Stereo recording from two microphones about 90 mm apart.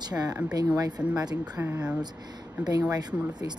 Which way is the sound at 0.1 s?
50° right (ahead or behind).